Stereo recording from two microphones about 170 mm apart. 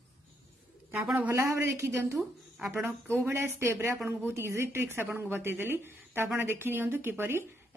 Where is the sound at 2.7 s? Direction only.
15° right (ahead or behind).